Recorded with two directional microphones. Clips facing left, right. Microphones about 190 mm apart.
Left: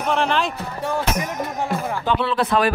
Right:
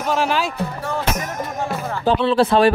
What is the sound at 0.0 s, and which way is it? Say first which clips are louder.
Speech: right 1 dB; 5° right (ahead or behind).